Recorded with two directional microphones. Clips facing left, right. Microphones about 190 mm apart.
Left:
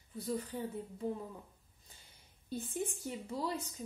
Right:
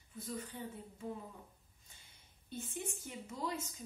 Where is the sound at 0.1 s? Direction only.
35° left (ahead or behind).